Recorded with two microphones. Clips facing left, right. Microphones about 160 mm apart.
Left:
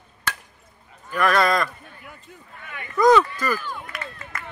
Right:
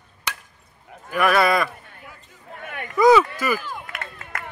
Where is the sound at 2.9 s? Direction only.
5° right (ahead or behind).